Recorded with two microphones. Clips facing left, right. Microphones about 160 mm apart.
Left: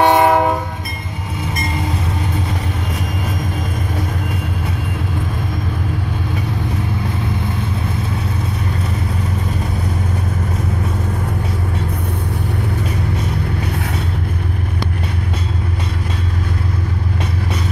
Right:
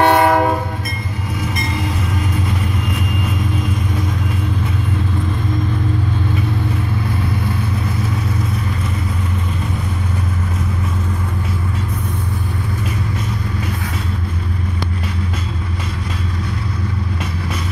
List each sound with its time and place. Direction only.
0.0 s train: 20° left (ahead or behind)